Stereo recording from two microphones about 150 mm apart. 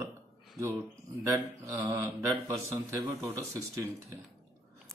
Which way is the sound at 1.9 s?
20° right (ahead or behind).